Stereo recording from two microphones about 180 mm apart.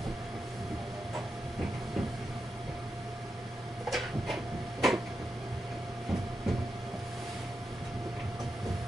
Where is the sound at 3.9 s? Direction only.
Centre (ahead or behind).